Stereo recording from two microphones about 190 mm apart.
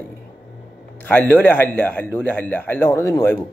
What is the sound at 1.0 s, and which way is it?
Speech, 10° left (ahead or behind).